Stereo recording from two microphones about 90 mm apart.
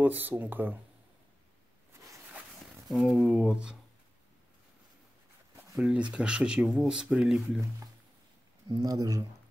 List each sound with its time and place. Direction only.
0.0 s speech: 20° right (ahead or behind)
3.2 s speech: 10° right (ahead or behind)
5.8 s speech: 10° right (ahead or behind)
8.6 s speech: 50° right (ahead or behind)